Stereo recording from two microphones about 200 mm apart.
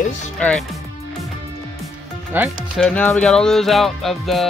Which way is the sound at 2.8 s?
5° left (ahead or behind).